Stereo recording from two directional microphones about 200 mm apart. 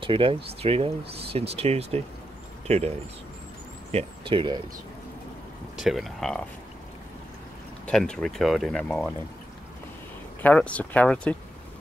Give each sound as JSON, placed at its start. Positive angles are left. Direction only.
{"t": 0.0, "sound": "speech", "side_deg": -25}
{"t": 3.9, "sound": "speech", "side_deg": -25}
{"t": 5.8, "sound": "speech", "side_deg": 0}
{"t": 7.8, "sound": "speech", "side_deg": 5}
{"t": 10.4, "sound": "speech", "side_deg": 5}